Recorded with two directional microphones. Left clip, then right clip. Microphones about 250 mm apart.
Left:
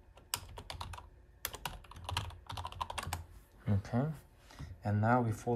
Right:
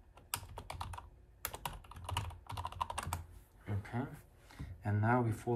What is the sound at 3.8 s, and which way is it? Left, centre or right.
Speech, centre.